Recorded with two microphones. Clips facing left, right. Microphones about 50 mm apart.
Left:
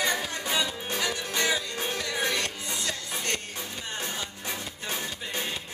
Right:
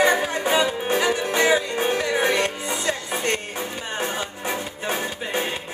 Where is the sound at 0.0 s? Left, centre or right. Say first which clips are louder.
Right 10 dB; right.